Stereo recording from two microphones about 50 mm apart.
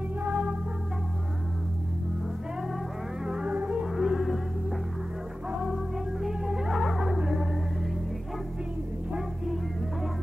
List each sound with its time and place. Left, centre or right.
0.2 s music: right
3.4 s music: right
3.8 s music: centre
6.2 s music: centre